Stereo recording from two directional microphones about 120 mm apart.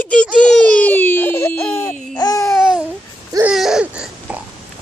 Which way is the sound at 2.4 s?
5° right (ahead or behind).